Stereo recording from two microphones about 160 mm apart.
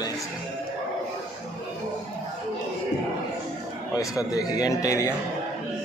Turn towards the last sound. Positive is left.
turn(degrees=20)  # may be behind; listen again after turning